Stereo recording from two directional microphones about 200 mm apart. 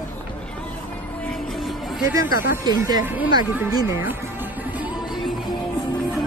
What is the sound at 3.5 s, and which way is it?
Speech, 10° right (ahead or behind).